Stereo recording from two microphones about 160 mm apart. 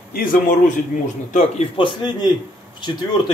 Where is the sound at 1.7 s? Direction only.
30° left (ahead or behind).